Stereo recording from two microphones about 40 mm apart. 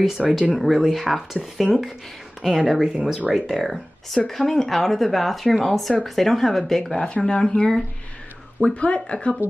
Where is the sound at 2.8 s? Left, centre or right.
Centre.